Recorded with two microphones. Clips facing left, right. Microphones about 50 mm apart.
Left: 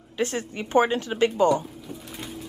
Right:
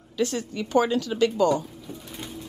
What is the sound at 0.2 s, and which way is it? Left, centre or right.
Speech, left.